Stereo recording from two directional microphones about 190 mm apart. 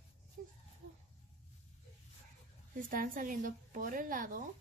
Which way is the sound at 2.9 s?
45° right (ahead or behind).